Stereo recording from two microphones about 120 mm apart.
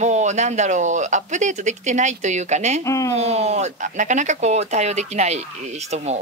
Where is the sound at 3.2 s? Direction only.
65° right (ahead or behind).